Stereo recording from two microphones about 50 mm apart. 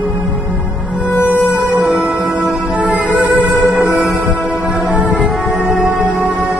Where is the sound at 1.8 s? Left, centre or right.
Right.